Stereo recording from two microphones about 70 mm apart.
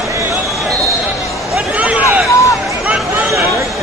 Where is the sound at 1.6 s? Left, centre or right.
Centre.